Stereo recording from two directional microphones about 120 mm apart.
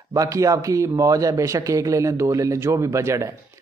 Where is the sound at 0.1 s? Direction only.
25° right (ahead or behind).